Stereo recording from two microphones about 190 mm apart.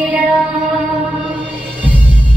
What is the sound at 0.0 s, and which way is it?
Music, 10° right (ahead or behind).